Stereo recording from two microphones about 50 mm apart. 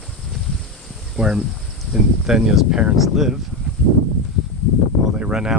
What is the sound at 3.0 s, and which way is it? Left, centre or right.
Speech, centre.